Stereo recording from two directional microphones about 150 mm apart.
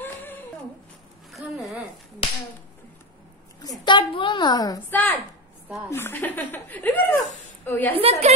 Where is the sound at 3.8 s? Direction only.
30° left (ahead or behind).